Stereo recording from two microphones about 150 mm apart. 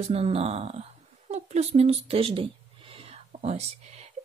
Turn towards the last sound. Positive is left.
turn(degrees=-50)  # may be behind; listen again after turning